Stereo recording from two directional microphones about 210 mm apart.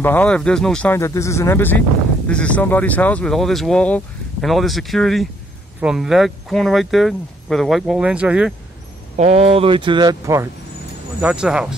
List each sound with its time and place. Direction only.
0.0 s speech: 10° left (ahead or behind)
9.1 s a man's voice: 30° right (ahead or behind); by 11.7 s 5° right (ahead or behind)